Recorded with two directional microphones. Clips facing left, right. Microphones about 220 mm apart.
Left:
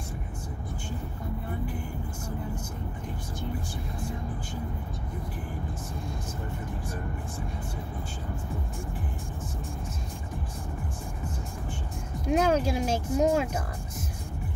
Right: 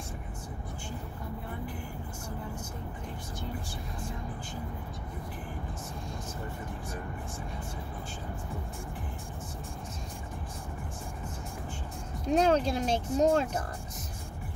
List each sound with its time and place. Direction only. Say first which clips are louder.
12.3 s speech: left 1 dB; 10° left (ahead or behind)